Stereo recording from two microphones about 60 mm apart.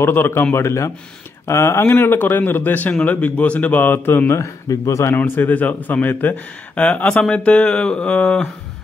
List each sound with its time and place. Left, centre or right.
0.0 s a man's voice: left
0.6 s a man's voice: left
1.9 s a man's voice: left
4.3 s a man's voice: left
5.1 s speech: left; by 8.5 s centre